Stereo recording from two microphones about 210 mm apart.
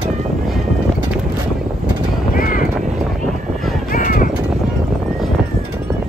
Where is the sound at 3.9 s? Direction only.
40° left (ahead or behind).